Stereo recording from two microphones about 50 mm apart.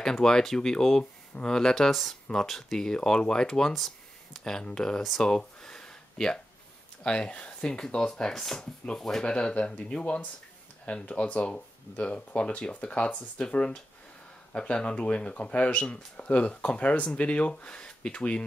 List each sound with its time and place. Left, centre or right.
0.0 s speech: centre
1.9 s speech: centre
3.7 s a sound: centre
4.6 s speech: centre
5.2 s a sound: centre
7.0 s speech: left
7.6 s speech: centre